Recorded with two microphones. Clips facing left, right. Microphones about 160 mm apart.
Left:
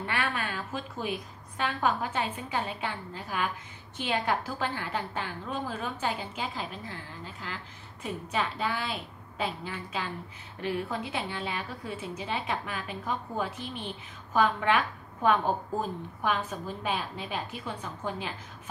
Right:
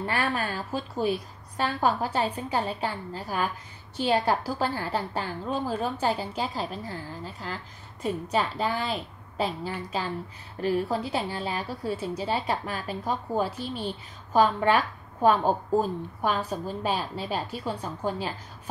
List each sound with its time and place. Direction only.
0.0 s a woman's voice: 35° right (ahead or behind)